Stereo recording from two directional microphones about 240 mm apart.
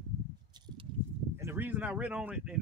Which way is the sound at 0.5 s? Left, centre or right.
Centre.